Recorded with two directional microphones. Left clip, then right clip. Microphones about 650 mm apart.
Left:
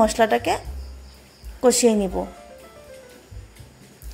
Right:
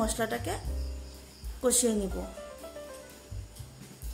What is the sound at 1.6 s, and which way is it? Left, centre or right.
Speech, right.